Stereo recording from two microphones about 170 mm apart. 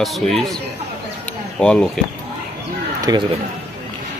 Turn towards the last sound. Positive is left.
turn(degrees=-25)  # may be behind; listen again after turning